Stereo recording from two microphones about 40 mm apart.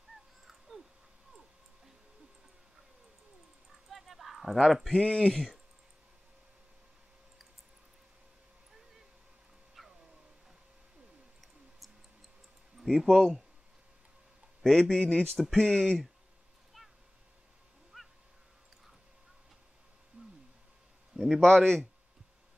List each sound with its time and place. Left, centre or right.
0.5 s a sound: centre
3.9 s a sound: centre
5.0 s speech: left
5.3 s speech: centre
9.8 s cat: centre
12.7 s speech: centre
14.6 s a man's voice: centre
15.0 s speech: left
17.9 s crow: centre
20.2 s a sound: right
21.1 s a sound: centre
21.4 s speech: centre